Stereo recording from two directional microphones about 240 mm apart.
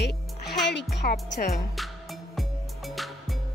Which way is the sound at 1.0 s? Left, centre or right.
Left.